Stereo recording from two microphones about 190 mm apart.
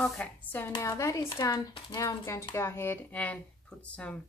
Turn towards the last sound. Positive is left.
turn(degrees=5)  # may be behind; listen again after turning